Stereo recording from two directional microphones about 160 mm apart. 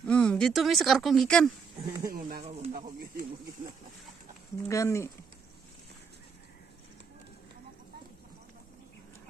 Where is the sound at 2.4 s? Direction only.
40° right (ahead or behind).